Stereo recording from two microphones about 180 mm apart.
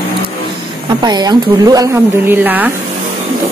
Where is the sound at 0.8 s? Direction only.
25° right (ahead or behind).